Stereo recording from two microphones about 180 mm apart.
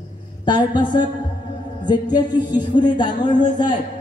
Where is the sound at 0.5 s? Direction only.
25° left (ahead or behind).